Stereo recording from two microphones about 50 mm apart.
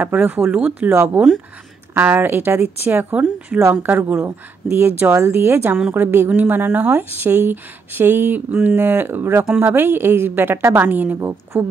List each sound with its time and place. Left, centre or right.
0.0 s speech: right
4.0 s speech: right
11.1 s speech: right